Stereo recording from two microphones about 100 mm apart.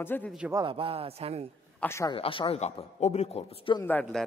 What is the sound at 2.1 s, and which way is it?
Speech, 65° left (ahead or behind).